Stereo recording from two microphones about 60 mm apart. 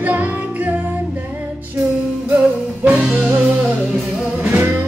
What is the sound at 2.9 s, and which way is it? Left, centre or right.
Music, centre.